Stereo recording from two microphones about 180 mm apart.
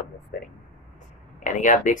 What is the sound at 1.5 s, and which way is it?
Speech, 45° left (ahead or behind).